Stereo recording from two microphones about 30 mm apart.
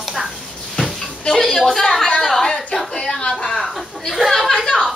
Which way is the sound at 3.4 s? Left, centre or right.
Centre.